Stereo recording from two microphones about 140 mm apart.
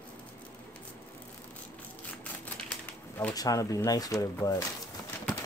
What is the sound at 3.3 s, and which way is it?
Speech, 25° left (ahead or behind).